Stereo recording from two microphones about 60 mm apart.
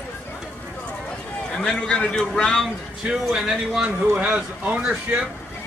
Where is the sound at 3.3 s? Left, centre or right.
Centre.